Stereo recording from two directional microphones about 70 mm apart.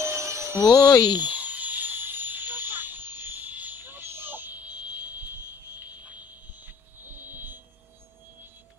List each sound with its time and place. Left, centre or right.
0.0 s a sound: right
0.6 s speech: left
1.2 s vehicle: right
7.2 s vehicle: right